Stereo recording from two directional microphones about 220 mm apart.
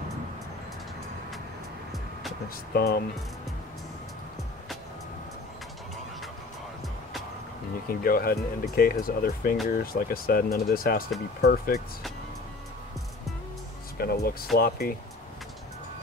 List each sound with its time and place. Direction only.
2.7 s speech: 45° left (ahead or behind)
7.9 s speech: 40° left (ahead or behind)
13.9 s speech: 45° left (ahead or behind)